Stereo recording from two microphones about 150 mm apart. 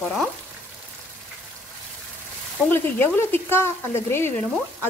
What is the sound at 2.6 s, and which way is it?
Frying, 15° left (ahead or behind).